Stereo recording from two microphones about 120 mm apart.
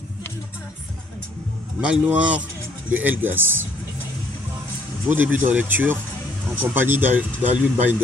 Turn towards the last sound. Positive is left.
turn(degrees=-15)  # may be behind; listen again after turning